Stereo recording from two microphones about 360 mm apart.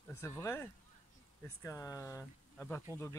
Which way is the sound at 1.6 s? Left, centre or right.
Centre.